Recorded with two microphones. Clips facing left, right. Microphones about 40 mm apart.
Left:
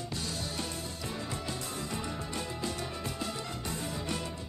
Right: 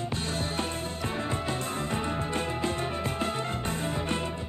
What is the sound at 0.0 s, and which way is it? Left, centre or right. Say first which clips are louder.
Music: right 6 dB; right.